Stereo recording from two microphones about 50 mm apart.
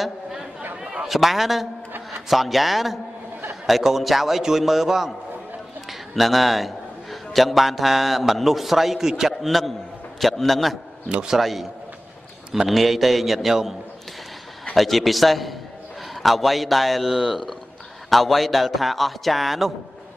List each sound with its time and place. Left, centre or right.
1.0 s speech: centre
1.9 s a sound: right
2.2 s a man's voice: centre
11.1 s a man's voice: right
11.3 s speech: centre
14.8 s speech: centre